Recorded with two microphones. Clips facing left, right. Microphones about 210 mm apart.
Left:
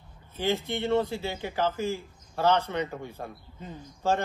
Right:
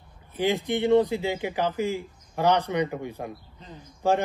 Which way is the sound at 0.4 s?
15° right (ahead or behind).